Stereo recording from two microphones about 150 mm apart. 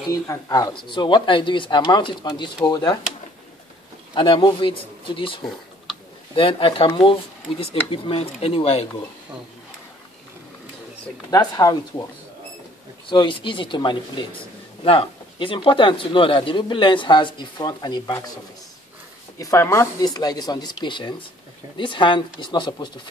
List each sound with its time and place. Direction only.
0.1 s speech: 20° left (ahead or behind)
4.1 s speech: 35° left (ahead or behind)
11.2 s speech: 25° left (ahead or behind)
13.0 s speech: 35° left (ahead or behind)
19.3 s speech: 20° left (ahead or behind)